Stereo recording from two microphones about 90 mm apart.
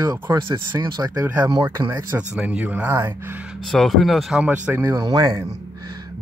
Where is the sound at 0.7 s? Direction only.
45° right (ahead or behind).